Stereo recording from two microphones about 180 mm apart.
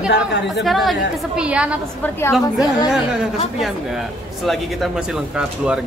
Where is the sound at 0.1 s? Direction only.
75° left (ahead or behind).